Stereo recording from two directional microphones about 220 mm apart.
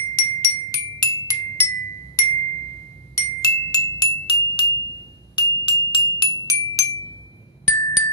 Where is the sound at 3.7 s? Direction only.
20° left (ahead or behind).